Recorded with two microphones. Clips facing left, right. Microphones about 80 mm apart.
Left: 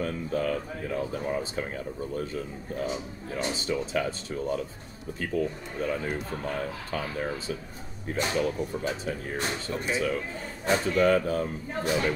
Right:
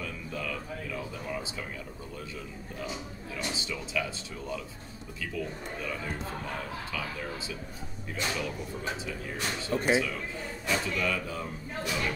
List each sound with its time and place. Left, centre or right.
0.0 s a man's voice: left
9.7 s speech: right
9.9 s a man's voice: left